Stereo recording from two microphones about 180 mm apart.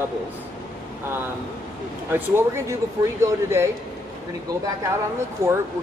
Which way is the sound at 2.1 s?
15° right (ahead or behind).